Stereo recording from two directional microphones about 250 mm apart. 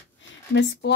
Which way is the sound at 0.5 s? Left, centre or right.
Left.